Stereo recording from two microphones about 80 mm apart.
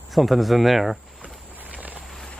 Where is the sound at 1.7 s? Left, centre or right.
Centre.